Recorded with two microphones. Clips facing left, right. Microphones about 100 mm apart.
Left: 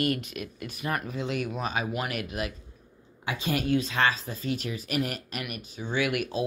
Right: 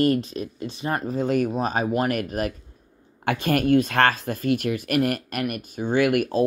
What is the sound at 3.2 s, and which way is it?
Speech, 60° right (ahead or behind).